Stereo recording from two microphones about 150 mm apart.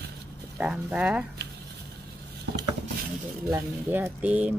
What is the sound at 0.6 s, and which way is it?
Speech, 10° right (ahead or behind).